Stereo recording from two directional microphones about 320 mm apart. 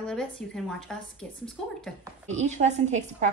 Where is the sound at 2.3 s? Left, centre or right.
Right.